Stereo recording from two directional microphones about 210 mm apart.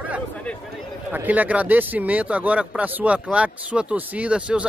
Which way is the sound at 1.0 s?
10° right (ahead or behind).